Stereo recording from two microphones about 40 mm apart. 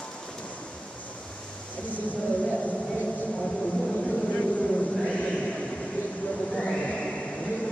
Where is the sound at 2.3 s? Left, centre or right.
Left.